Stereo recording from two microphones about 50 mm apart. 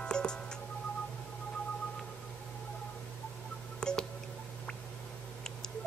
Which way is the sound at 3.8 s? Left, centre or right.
Centre.